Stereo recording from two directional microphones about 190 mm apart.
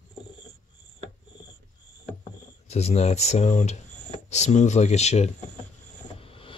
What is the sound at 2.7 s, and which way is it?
Speech, 35° left (ahead or behind).